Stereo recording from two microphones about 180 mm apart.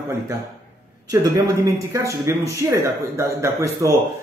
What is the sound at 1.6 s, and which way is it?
Speech, 15° right (ahead or behind).